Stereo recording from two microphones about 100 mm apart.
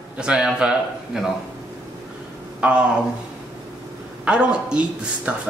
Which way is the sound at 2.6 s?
10° right (ahead or behind).